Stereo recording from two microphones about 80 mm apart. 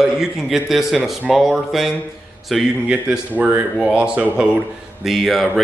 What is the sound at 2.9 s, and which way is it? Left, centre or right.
Speech, centre.